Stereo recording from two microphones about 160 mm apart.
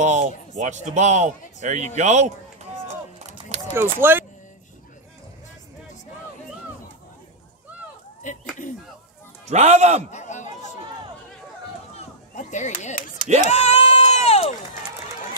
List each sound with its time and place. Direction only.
0.0 s a man's voice: 50° right (ahead or behind)
2.9 s a sound: 45° right (ahead or behind)
3.7 s speech: 15° right (ahead or behind)
8.2 s a sound: 50° left (ahead or behind)
9.5 s a man's voice: 45° right (ahead or behind)
10.1 s chatter: 50° left (ahead or behind)
11.9 s chop: 50° left (ahead or behind)
13.4 s crowd: 45° left (ahead or behind)